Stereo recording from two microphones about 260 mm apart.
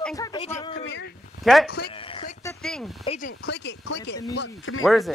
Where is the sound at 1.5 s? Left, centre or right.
Centre.